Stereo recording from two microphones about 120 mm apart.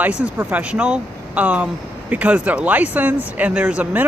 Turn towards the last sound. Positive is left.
turn(degrees=-10)  # may be behind; listen again after turning